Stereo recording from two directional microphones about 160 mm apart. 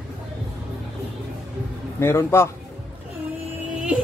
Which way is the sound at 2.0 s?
15° left (ahead or behind).